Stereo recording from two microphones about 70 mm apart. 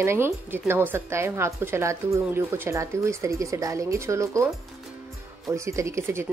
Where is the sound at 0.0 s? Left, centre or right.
Right.